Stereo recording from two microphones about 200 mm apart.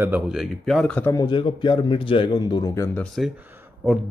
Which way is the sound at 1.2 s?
25° left (ahead or behind).